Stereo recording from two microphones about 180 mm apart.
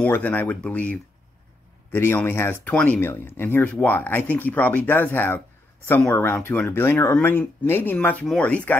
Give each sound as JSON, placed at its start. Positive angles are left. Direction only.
{"t": 0.0, "sound": "speech", "side_deg": 10}